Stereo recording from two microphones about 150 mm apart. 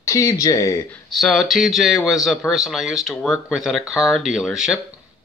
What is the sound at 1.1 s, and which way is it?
Speech, centre (ahead or behind).